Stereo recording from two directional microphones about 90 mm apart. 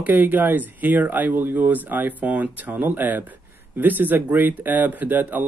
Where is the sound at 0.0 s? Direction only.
20° right (ahead or behind).